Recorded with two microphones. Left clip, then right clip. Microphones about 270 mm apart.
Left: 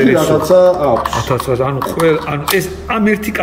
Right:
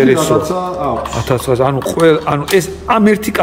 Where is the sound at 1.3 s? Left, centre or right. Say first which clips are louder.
Right 2 dB; centre.